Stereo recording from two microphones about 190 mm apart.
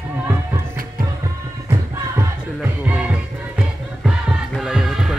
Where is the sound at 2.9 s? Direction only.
5° right (ahead or behind).